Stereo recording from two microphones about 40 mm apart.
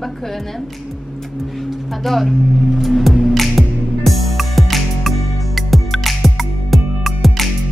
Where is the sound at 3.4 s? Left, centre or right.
Centre.